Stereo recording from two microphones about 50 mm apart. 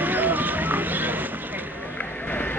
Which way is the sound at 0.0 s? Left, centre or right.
Right.